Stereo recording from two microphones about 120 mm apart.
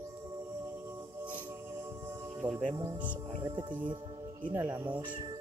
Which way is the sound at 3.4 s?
40° right (ahead or behind).